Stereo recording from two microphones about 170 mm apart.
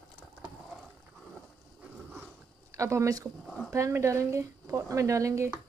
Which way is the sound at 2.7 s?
20° right (ahead or behind).